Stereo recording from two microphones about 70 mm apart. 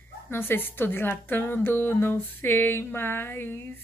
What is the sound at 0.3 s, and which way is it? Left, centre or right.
A woman's voice, left.